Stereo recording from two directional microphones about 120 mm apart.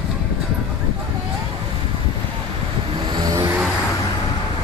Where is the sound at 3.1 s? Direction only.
30° right (ahead or behind).